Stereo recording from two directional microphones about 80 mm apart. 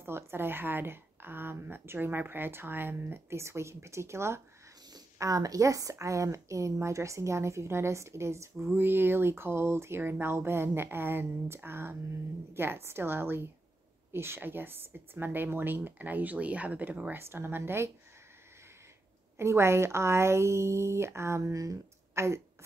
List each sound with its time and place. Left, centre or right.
0.0 s a woman's voice: right
4.9 s a woman's voice: right
19.3 s speech: right